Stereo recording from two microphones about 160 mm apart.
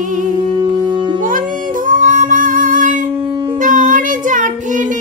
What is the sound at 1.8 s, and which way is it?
Music, 55° right (ahead or behind).